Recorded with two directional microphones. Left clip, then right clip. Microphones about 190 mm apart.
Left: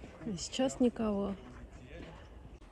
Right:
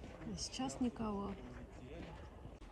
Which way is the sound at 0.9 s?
40° left (ahead or behind).